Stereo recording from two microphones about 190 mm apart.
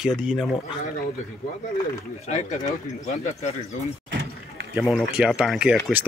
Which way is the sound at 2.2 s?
35° left (ahead or behind).